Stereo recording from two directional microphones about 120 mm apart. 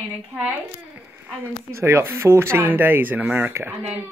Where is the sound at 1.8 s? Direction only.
20° right (ahead or behind).